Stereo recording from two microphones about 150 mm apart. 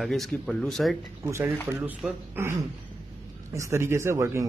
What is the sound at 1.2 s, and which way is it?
A man's voice, 15° right (ahead or behind).